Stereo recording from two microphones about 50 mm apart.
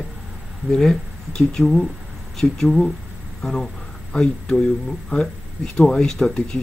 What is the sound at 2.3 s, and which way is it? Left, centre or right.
Speech, centre.